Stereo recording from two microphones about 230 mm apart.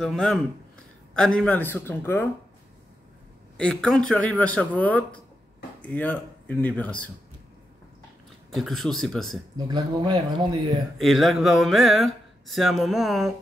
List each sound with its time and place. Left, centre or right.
0.0 s speech: centre
3.5 s speech: centre
8.5 s speech: centre
9.7 s speech: centre
11.0 s speech: centre